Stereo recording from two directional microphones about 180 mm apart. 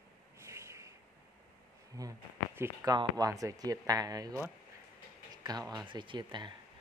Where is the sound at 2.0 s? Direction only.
15° right (ahead or behind).